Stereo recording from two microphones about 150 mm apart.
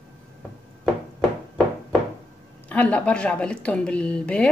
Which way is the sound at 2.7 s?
10° left (ahead or behind).